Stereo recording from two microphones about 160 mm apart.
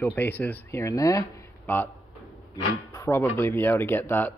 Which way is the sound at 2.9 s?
15° left (ahead or behind).